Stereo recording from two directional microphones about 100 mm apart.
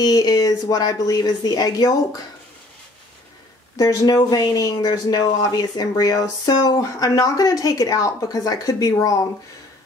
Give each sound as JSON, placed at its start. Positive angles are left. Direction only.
{"t": 0.0, "sound": "speech", "side_deg": 40}
{"t": 3.7, "sound": "speech", "side_deg": 35}